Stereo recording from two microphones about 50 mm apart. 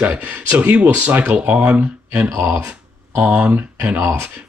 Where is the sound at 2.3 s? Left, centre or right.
Right.